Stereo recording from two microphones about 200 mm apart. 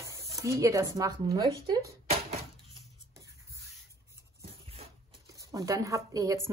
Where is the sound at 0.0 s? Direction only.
15° right (ahead or behind).